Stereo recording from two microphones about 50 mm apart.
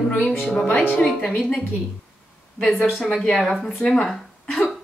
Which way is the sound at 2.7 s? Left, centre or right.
Centre.